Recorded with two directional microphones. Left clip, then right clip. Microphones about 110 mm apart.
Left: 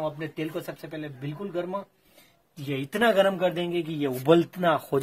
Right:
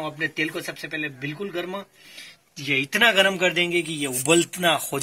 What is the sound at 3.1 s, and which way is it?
Speech, 40° left (ahead or behind).